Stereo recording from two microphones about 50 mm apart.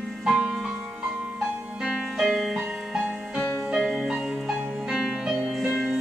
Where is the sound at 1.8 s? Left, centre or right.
Centre.